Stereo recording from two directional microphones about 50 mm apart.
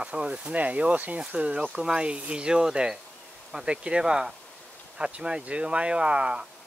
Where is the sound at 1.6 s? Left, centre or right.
Centre.